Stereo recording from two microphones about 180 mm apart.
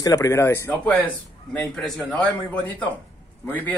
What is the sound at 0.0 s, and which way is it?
A man's voice, 15° left (ahead or behind).